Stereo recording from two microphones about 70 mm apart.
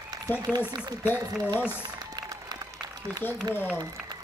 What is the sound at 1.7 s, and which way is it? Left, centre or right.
Applause, right.